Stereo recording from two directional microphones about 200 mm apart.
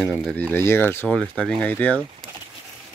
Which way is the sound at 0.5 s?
10° left (ahead or behind).